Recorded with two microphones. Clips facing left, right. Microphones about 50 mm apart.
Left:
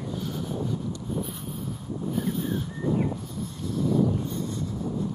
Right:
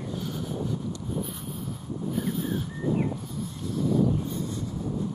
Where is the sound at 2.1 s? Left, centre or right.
Centre.